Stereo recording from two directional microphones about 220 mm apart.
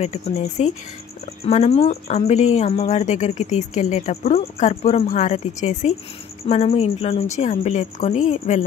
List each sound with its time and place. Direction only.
0.0 s speech: 30° left (ahead or behind)